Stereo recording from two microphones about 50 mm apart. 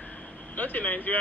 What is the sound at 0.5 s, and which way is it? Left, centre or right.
Speech, left.